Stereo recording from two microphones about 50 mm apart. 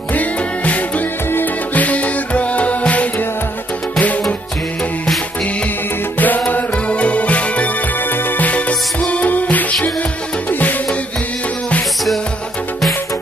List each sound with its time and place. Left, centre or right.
0.1 s music: left
6.1 s music: left
8.1 s music: left